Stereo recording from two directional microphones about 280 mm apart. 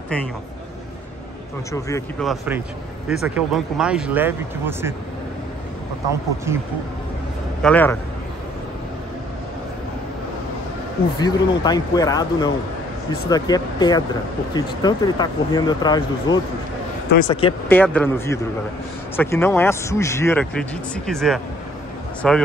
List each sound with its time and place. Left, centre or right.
1.7 s speech: centre
2.2 s speech: centre
7.6 s speech: centre
11.1 s speech: centre
17.6 s speech: centre